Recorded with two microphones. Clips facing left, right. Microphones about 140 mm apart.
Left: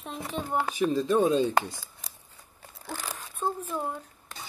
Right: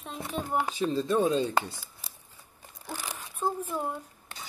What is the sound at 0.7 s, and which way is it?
Speech, 15° left (ahead or behind).